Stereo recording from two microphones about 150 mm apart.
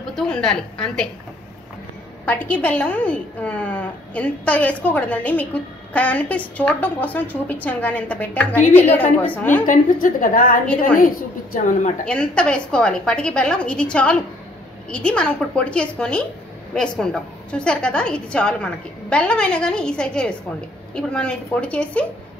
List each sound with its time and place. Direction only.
0.1 s a woman's voice: 5° left (ahead or behind)
2.2 s a woman's voice: 10° left (ahead or behind)
9.7 s a woman's voice: 65° left (ahead or behind)
12.0 s a woman's voice: 5° left (ahead or behind)